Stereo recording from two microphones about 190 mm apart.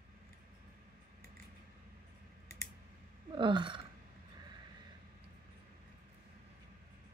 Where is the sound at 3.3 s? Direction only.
25° right (ahead or behind).